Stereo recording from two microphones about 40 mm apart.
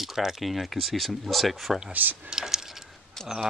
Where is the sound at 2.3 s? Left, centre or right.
Centre.